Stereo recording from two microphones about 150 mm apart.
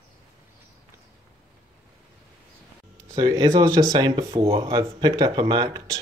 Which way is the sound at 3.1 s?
25° right (ahead or behind).